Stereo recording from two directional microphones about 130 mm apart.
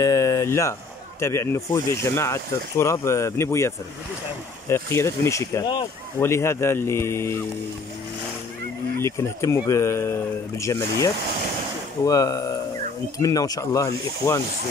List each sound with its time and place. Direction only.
0.0 s speech: 25° left (ahead or behind)
9.0 s speech: 20° left (ahead or behind)